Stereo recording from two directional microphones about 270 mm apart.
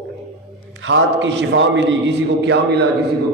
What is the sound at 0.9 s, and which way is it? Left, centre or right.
A man's voice, right.